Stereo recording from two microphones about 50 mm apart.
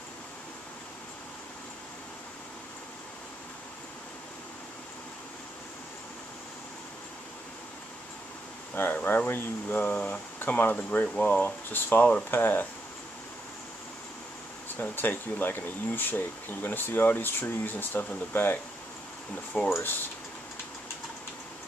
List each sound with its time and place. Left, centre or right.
8.9 s speech: left
12.0 s speech: left
12.3 s speech: left
14.8 s speech: left
19.5 s speech: left